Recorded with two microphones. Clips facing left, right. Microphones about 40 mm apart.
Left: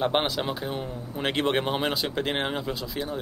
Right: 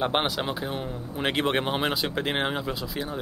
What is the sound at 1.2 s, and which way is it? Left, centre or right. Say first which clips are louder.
Speech: even; centre.